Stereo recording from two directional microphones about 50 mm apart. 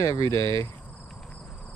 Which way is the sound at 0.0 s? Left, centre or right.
Left.